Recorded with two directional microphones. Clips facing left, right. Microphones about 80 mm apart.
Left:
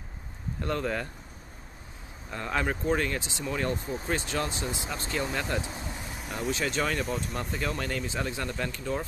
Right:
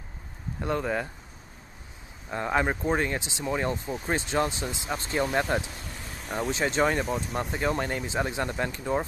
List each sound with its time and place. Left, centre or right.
0.6 s speech: centre
2.3 s speech: right
3.7 s speech: right
5.6 s vehicle: left
6.5 s speech: right
6.8 s speech: centre
7.5 s speech: right